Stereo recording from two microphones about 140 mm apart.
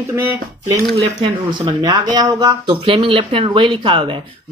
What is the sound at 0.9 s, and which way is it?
Speech, 35° right (ahead or behind).